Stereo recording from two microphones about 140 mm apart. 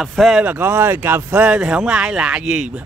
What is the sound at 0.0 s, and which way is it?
Speech, centre (ahead or behind).